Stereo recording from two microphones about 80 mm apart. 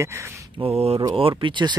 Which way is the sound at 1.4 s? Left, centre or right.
Right.